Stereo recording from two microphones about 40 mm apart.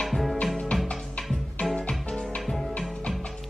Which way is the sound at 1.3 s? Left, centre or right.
Centre.